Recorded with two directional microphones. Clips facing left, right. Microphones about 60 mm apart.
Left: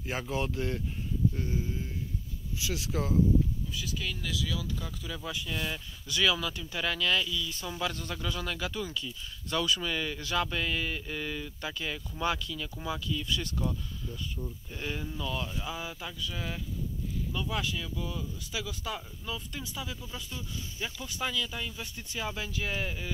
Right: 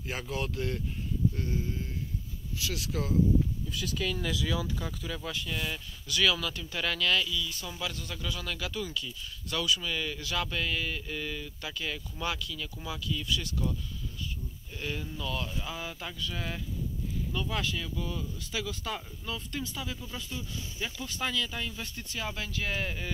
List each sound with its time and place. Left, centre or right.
0.0 s speech: left
1.3 s speech: centre
3.7 s speech: right
4.3 s speech: right
4.6 s speech: centre
5.0 s speech: centre
5.3 s speech: centre
6.0 s a man's voice: left
20.2 s speech: centre
21.0 s speech: centre